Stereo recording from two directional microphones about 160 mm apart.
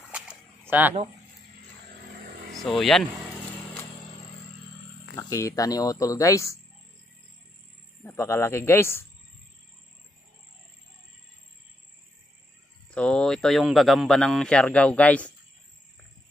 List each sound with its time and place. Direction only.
0.1 s a sound: 10° right (ahead or behind)
2.6 s speech: centre (ahead or behind)
5.1 s speech: 20° left (ahead or behind)
8.0 s a man's voice: 15° left (ahead or behind)
12.9 s speech: 5° left (ahead or behind)